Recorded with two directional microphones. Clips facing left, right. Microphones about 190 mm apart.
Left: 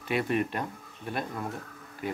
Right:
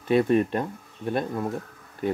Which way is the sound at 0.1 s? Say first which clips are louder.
Right 8 dB; 30° right (ahead or behind).